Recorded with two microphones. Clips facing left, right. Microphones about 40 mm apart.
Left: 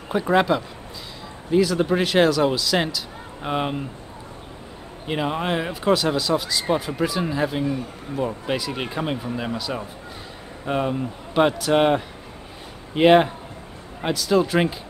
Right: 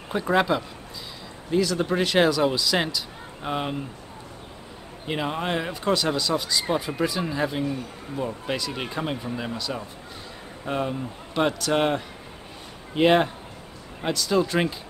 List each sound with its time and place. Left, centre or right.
0.1 s speech: centre
3.4 s speech: centre
5.0 s speech: centre